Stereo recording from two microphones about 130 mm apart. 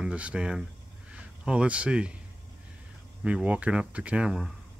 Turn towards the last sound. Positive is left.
turn(degrees=-5)  # may be behind; listen again after turning